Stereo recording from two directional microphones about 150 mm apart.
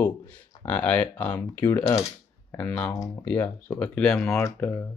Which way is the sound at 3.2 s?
10° left (ahead or behind).